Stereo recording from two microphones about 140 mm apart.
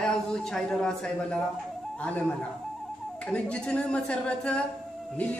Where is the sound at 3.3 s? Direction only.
10° left (ahead or behind).